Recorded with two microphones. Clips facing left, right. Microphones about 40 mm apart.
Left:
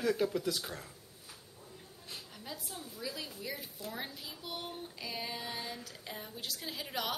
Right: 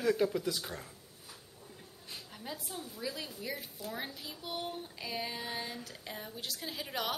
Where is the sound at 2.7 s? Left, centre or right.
Centre.